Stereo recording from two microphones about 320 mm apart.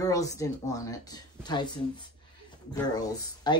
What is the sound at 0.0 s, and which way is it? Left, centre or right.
Speech, centre.